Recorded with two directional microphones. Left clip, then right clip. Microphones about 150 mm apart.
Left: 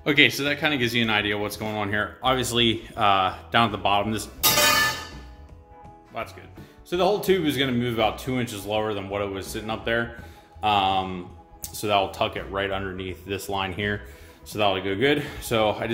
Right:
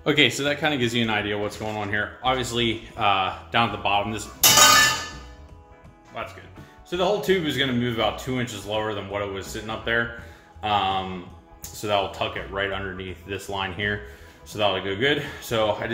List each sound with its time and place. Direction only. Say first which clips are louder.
0.0 s speech: left 1 dB; centre (ahead or behind)
1.2 s a man's voice: left 1 dB; 20° left (ahead or behind); by 4.3 s 40° left (ahead or behind)
6.2 s a man's voice: even; 35° left (ahead or behind)